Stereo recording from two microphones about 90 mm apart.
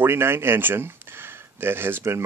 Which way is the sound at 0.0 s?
25° right (ahead or behind).